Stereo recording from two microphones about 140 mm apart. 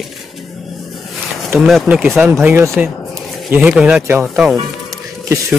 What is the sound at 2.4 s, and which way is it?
Speech, 15° right (ahead or behind).